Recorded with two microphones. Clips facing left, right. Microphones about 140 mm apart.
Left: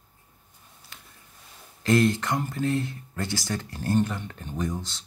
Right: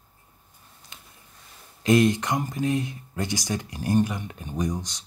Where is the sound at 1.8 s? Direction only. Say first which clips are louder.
Right 2 dB; 15° right (ahead or behind).